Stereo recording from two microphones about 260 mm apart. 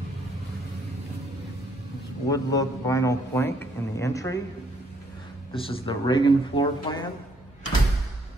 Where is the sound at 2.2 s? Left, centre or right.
Centre.